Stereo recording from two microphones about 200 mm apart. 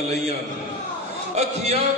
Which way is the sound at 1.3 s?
30° right (ahead or behind).